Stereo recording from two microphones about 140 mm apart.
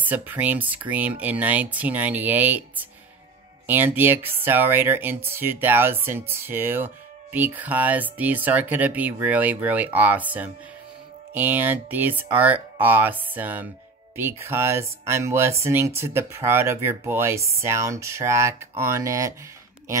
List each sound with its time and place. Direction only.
0.0 s speech: 10° right (ahead or behind)
3.6 s speech: 15° right (ahead or behind)